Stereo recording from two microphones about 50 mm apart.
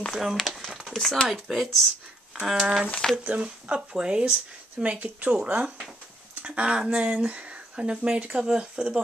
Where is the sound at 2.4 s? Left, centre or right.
Centre.